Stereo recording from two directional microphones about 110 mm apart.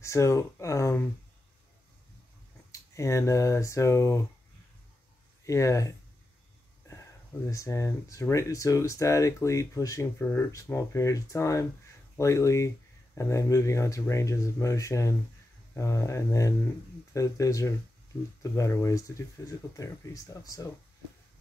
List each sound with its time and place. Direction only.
0.0 s speech: 30° left (ahead or behind)
2.7 s speech: 25° left (ahead or behind)
5.4 s speech: 30° left (ahead or behind)
7.4 s speech: 30° left (ahead or behind)